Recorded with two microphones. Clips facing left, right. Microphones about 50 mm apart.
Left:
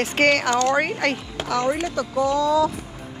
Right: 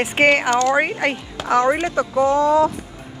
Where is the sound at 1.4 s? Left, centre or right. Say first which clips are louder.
Right 6 dB; right.